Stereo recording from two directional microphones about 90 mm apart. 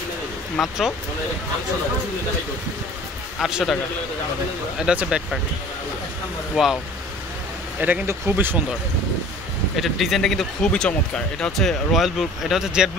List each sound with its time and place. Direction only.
0.6 s speech: 5° right (ahead or behind)
3.3 s speech: 5° right (ahead or behind)
4.7 s speech: 10° right (ahead or behind)
6.5 s speech: 5° right (ahead or behind)
8.1 s speech: 25° right (ahead or behind)
9.8 s speech: centre (ahead or behind)